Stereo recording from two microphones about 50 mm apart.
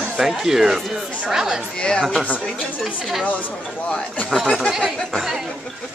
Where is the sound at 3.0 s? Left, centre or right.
Centre.